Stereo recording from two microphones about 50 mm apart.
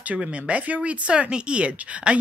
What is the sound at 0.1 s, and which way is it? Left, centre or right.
A woman's voice, right.